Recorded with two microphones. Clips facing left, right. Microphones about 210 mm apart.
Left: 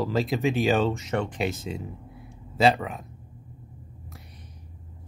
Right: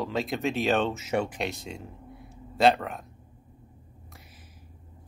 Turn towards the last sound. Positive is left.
turn(degrees=-5)  # may be behind; listen again after turning